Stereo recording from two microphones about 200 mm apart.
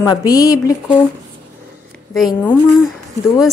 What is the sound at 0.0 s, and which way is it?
Speech, 15° left (ahead or behind).